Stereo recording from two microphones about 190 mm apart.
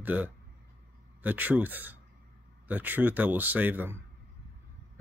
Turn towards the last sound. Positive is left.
turn(degrees=-10)  # may be behind; listen again after turning